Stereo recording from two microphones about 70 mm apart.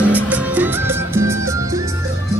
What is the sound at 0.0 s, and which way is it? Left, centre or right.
Music, right.